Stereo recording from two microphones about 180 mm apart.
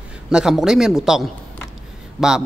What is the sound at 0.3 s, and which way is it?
A man's voice, 5° right (ahead or behind).